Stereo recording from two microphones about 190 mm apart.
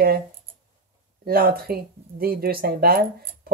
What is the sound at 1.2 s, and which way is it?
Speech, 50° right (ahead or behind).